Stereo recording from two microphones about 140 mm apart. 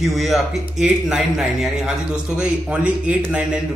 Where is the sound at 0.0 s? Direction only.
Centre (ahead or behind).